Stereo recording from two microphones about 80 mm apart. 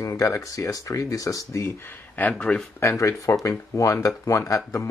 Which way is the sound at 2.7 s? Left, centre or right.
Left.